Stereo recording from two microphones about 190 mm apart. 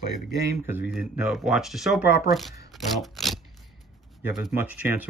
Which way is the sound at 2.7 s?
Centre (ahead or behind).